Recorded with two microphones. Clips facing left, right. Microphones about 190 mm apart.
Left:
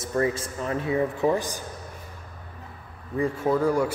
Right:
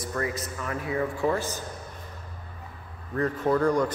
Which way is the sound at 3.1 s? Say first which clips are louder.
Left 1 dB; 10° left (ahead or behind).